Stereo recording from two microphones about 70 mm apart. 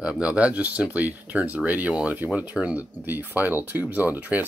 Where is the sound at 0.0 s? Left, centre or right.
Centre.